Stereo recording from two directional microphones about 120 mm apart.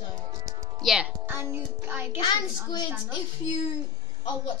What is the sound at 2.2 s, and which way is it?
Speech, 35° left (ahead or behind).